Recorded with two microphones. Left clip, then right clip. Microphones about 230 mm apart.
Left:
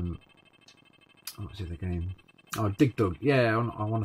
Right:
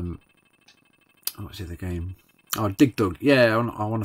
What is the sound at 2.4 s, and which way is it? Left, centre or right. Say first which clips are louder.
Speech: right 6 dB; centre.